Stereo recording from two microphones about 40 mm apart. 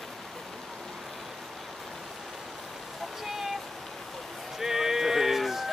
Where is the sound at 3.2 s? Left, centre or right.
Centre.